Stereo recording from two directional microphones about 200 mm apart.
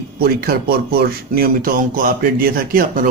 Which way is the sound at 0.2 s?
50° right (ahead or behind).